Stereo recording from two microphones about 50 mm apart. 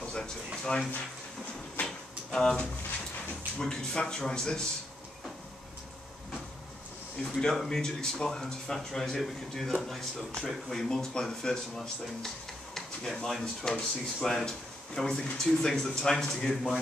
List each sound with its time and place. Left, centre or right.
0.0 s a sound: centre
2.3 s speech: centre
7.3 s a man's voice: centre